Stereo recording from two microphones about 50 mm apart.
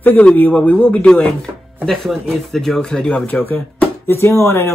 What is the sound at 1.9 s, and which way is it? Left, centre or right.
Speech, centre.